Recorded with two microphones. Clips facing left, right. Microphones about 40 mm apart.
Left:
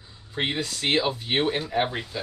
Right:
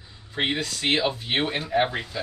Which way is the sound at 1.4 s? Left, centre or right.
Centre.